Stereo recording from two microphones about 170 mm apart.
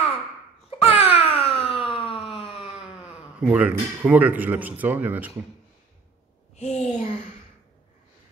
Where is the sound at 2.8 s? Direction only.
5° right (ahead or behind).